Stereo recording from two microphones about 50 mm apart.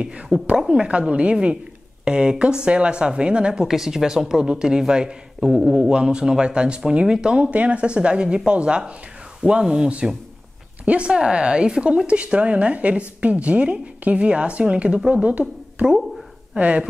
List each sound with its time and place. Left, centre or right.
0.0 s a woman's voice: right
16.5 s a woman's voice: right